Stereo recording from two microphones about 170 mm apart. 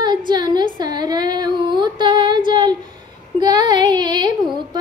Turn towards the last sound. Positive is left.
turn(degrees=-25)  # may be behind; listen again after turning